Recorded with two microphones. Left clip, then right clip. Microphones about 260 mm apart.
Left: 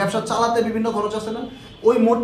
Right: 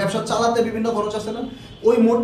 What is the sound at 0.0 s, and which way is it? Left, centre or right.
A man's voice, centre.